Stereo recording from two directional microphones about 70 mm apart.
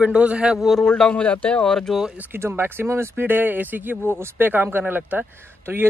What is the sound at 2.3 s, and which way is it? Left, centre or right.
Speech, right.